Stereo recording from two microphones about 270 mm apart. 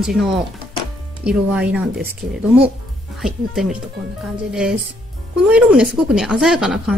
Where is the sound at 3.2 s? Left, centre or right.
Centre.